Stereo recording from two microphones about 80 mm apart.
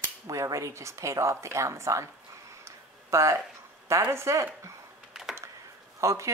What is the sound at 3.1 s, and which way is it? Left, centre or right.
A woman's voice, right.